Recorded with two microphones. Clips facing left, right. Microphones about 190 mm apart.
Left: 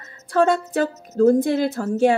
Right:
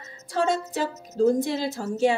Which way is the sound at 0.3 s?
55° left (ahead or behind).